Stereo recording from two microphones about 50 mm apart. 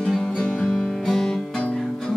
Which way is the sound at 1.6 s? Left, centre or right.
Left.